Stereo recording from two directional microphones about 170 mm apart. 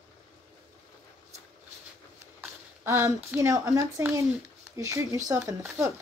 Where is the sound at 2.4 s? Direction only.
15° right (ahead or behind).